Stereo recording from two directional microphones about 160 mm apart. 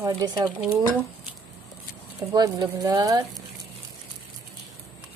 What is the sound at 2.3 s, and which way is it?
Speech, 25° right (ahead or behind).